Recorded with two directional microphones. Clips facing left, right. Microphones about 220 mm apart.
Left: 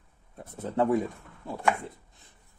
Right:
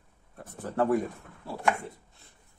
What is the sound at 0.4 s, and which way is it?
Speech, 20° left (ahead or behind).